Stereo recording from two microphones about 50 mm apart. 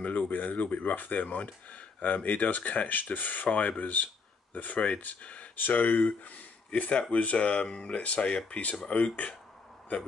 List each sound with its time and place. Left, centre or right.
0.0 s speech: left